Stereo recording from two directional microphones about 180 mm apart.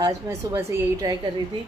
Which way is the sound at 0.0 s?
15° right (ahead or behind).